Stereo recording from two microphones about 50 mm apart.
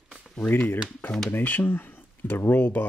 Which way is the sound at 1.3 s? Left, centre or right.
Left.